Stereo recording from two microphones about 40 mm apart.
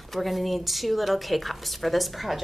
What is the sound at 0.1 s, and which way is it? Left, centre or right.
A woman's voice, centre.